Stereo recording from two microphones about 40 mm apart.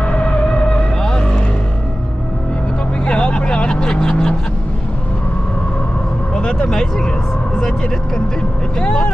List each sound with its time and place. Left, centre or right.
0.0 s vehicle: left
3.1 s vehicle: left
6.3 s vehicle: centre
8.8 s speech: left